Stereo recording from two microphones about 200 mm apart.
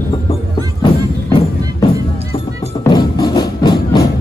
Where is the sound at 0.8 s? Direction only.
25° left (ahead or behind).